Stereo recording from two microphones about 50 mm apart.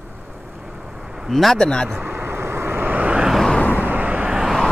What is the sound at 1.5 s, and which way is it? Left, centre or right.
Speech, centre.